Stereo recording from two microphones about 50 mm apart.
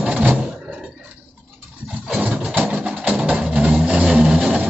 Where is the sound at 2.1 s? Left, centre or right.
Right.